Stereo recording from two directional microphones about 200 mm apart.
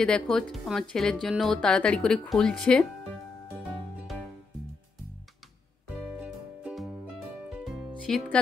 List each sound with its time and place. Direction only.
0.0 s speech: 5° left (ahead or behind)
6.2 s music: 5° right (ahead or behind)
8.1 s speech: centre (ahead or behind)